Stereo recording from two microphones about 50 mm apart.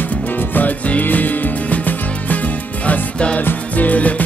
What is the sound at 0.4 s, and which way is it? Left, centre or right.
Music, left.